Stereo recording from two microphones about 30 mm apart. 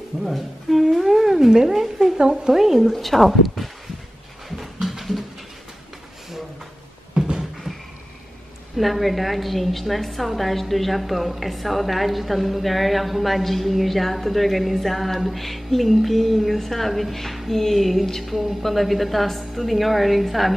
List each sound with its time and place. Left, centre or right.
0.2 s a woman's voice: centre
2.1 s speech: right
2.5 s speech: centre
2.9 s a woman's voice: centre
4.8 s a sound: centre
7.2 s a sound: right
8.7 s a woman's voice: centre